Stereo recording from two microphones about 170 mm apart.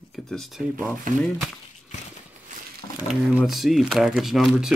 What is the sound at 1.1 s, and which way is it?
Speech, 55° right (ahead or behind).